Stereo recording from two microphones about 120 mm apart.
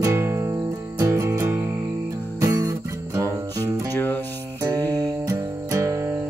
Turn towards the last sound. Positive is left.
turn(degrees=-25)  # may be behind; listen again after turning